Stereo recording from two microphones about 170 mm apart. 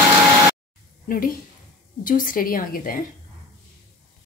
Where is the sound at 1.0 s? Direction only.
55° left (ahead or behind).